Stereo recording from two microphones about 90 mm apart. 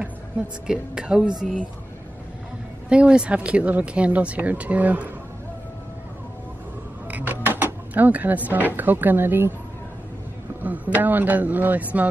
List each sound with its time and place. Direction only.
0.7 s speech: 10° right (ahead or behind)
2.9 s speech: 10° right (ahead or behind)
7.1 s a sound: 20° right (ahead or behind)
8.7 s speech: 20° right (ahead or behind)
10.6 s a man's voice: 20° right (ahead or behind)